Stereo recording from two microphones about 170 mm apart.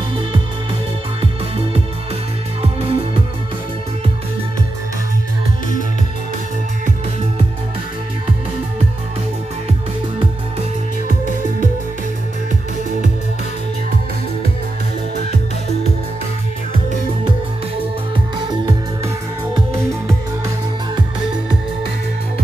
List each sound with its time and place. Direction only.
2.6 s music: 35° right (ahead or behind)
19.5 s music: 15° right (ahead or behind)